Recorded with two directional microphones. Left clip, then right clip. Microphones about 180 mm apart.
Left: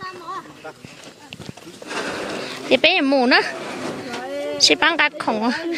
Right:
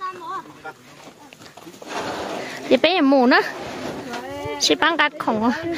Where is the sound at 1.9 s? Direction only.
40° left (ahead or behind).